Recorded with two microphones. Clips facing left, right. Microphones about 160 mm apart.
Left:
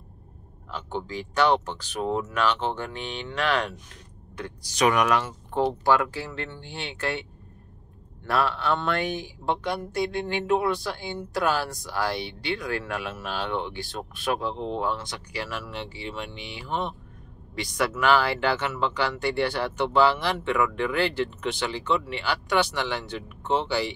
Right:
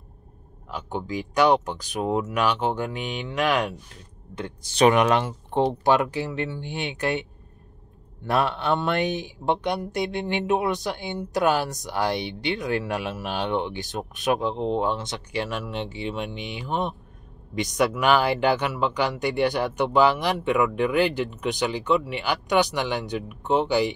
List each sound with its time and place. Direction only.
0.7 s speech: 10° right (ahead or behind)
4.4 s speech: 25° right (ahead or behind)
8.3 s speech: 20° right (ahead or behind)